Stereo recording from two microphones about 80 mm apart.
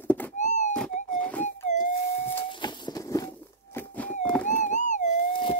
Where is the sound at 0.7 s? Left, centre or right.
Centre.